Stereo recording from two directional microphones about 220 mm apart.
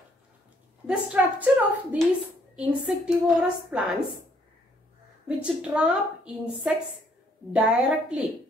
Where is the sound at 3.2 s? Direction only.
Centre (ahead or behind).